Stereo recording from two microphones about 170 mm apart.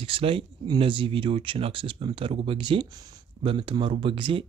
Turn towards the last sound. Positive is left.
turn(degrees=-30)  # may be behind; listen again after turning